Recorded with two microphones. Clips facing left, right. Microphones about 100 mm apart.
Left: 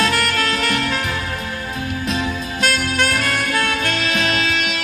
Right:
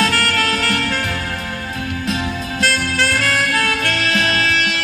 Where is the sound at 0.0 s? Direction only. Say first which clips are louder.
Right 1 dB; 20° left (ahead or behind).